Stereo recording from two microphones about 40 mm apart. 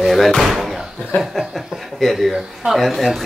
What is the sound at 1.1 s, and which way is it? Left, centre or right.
Chuckle, left.